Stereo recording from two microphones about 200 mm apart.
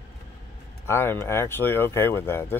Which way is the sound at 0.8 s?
10° left (ahead or behind).